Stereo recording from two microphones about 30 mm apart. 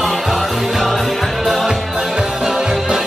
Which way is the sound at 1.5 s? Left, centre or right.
Centre.